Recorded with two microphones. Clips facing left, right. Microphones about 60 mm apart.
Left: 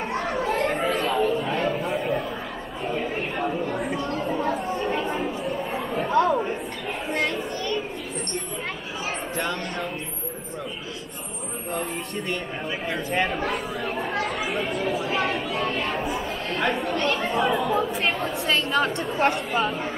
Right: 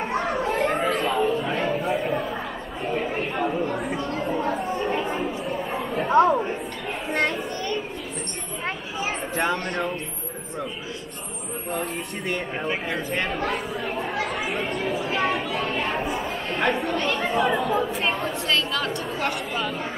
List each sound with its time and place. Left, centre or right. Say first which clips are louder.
0.0 s children playing: right 1 dB; centre
1.4 s a sound: even; centre
2.9 s chatter: right 2 dB; centre
3.9 s a sound: even; centre
4.5 s chatter: even; centre
6.0 s chatter: right 3 dB; right
7.2 s speech: right 2 dB; centre
9.4 s speech: right 5 dB; centre
12.9 s speech: left 1 dB; centre
18.9 s speech: left 4 dB; left